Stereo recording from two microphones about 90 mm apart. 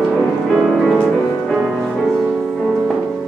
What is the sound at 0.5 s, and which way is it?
Music, centre (ahead or behind).